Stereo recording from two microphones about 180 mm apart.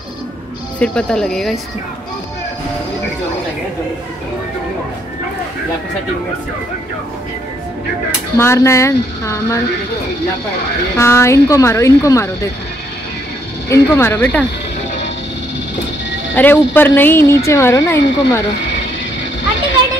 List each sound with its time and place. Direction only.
0.7 s speech: 5° left (ahead or behind)
8.4 s speech: 15° left (ahead or behind)
11.0 s speech: 15° left (ahead or behind)
13.7 s speech: 15° left (ahead or behind)
16.3 s speech: 10° left (ahead or behind)